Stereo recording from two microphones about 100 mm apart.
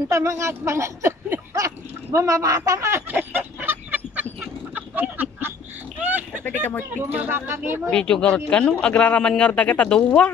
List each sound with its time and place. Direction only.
0.1 s speech: 30° right (ahead or behind)
3.1 s chicken: 20° right (ahead or behind)
5.1 s a sound: 20° right (ahead or behind)
6.4 s speech: 20° left (ahead or behind)
7.1 s speech: 20° right (ahead or behind)
7.9 s speech: 10° left (ahead or behind)